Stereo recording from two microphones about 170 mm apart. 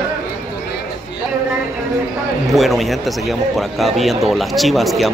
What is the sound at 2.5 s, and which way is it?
A man's voice, centre (ahead or behind).